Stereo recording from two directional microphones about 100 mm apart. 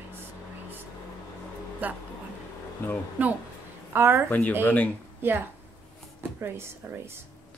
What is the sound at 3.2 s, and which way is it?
Speech, 15° right (ahead or behind).